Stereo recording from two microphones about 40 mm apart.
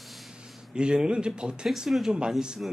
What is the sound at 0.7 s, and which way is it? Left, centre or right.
Speech, right.